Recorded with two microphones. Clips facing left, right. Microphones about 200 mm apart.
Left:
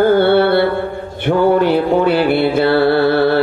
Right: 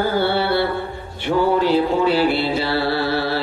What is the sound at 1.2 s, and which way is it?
Mantra, 55° left (ahead or behind).